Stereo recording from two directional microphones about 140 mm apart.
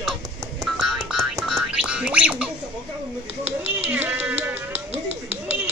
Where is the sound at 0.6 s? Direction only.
Centre (ahead or behind).